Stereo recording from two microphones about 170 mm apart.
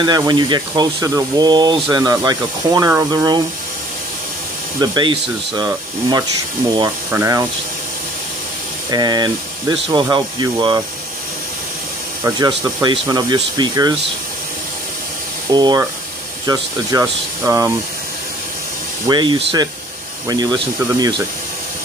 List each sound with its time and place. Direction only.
0.0 s speech: 25° right (ahead or behind)
4.7 s speech: 25° right (ahead or behind)
8.9 s speech: 25° right (ahead or behind)
12.4 s speech: 25° right (ahead or behind)
15.5 s speech: 25° right (ahead or behind)
19.0 s speech: 25° right (ahead or behind)
20.8 s speech: 15° right (ahead or behind)